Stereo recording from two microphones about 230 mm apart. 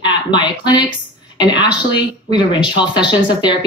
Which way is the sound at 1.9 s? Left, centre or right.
Centre.